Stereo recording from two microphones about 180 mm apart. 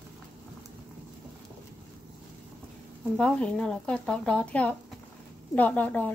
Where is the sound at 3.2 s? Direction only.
5° left (ahead or behind).